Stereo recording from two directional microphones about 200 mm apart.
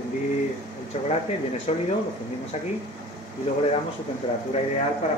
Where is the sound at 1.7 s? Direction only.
30° left (ahead or behind).